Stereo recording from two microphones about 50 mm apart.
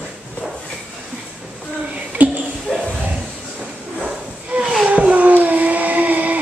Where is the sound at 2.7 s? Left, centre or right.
Centre.